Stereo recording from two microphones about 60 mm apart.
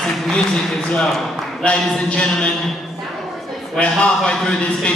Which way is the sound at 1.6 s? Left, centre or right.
Centre.